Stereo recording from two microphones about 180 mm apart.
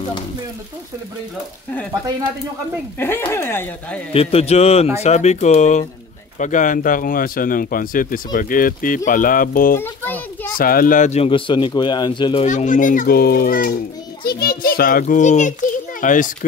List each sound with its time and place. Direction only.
3.0 s speech: 10° left (ahead or behind)
4.1 s speech: 30° left (ahead or behind); by 9.8 s 50° left (ahead or behind)
9.8 s children playing: 10° left (ahead or behind)
10.6 s speech: 55° left (ahead or behind); by 12.4 s 25° left (ahead or behind)
12.4 s speech: 45° left (ahead or behind)